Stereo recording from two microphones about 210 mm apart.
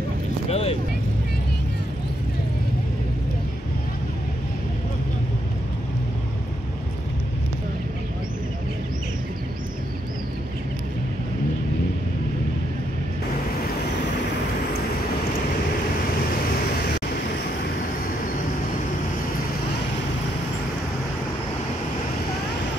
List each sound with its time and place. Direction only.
0.5 s vehicle: 30° left (ahead or behind)